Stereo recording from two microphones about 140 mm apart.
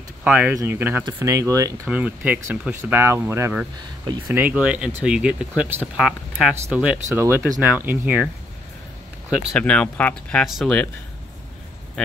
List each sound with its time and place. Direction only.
0.2 s speech: 10° right (ahead or behind)
1.9 s speech: 10° right (ahead or behind)
7.1 s speech: 20° right (ahead or behind)
9.5 s speech: 5° left (ahead or behind)